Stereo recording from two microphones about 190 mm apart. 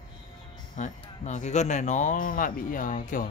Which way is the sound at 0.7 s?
40° left (ahead or behind).